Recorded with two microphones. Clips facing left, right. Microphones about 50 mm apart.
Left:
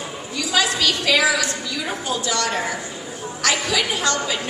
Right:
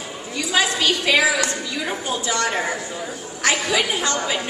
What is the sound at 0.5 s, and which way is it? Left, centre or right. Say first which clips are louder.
A woman's voice: right 1 dB; right.